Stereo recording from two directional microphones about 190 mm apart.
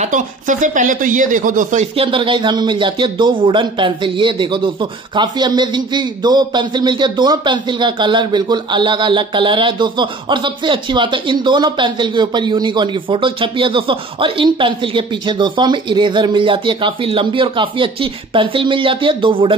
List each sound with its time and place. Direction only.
0.0 s speech: 40° right (ahead or behind)